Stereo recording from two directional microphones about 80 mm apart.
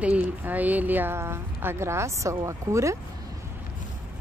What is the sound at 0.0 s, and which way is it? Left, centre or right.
Speech, centre.